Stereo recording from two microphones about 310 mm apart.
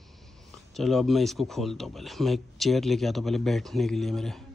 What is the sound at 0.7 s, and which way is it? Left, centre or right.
Speech, centre.